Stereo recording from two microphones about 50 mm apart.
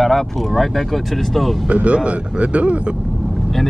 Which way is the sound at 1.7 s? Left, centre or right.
Right.